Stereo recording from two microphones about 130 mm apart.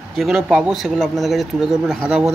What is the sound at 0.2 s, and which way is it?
Speech, 5° right (ahead or behind).